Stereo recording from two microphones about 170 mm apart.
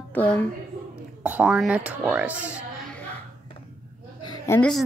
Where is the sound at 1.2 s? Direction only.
5° right (ahead or behind).